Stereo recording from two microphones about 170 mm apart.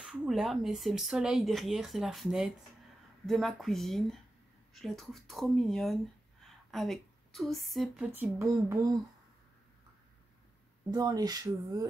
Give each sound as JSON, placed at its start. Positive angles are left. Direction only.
{"t": 0.0, "sound": "speech", "side_deg": -5}
{"t": 6.4, "sound": "a sound", "side_deg": 0}
{"t": 8.1, "sound": "speech", "side_deg": -15}
{"t": 10.9, "sound": "speech", "side_deg": -20}